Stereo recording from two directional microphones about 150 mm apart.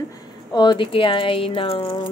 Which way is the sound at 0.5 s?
30° left (ahead or behind).